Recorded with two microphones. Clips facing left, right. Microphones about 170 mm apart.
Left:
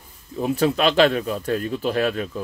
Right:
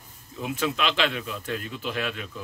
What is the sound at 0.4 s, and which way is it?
Speech, 35° left (ahead or behind).